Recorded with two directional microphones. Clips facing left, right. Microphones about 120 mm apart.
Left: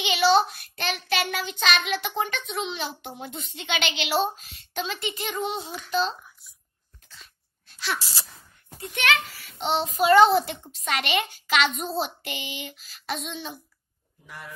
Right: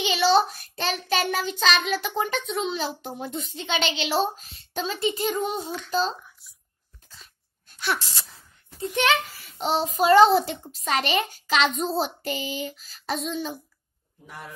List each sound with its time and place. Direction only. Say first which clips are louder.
0.0 s child singing: even; 35° right (ahead or behind)
4.7 s a child's voice: right 4 dB; 35° right (ahead or behind)
9.0 s a child's voice: right 2 dB; 35° right (ahead or behind)